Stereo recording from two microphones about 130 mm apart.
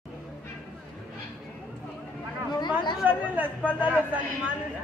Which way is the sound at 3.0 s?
15° right (ahead or behind).